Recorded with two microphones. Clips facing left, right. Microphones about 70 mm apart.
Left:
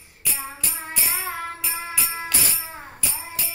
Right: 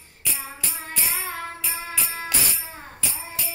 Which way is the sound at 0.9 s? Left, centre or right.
Centre.